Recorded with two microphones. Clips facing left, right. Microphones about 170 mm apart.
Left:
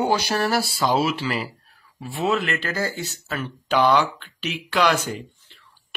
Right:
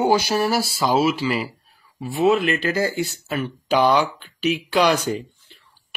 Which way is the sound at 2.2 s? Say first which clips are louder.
Right 5 dB; 20° right (ahead or behind).